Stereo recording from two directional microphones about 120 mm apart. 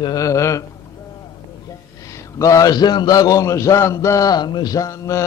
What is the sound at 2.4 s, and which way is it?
A man's voice, 25° left (ahead or behind).